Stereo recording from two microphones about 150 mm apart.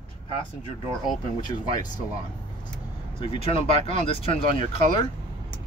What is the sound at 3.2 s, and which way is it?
Speech, 35° left (ahead or behind).